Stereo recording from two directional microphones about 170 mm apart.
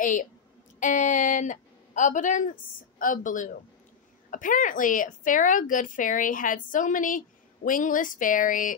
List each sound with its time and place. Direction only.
0.0 s a woman's voice: 50° left (ahead or behind)